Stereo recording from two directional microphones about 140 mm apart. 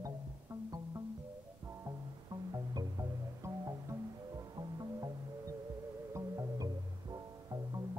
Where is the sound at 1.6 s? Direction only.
25° right (ahead or behind).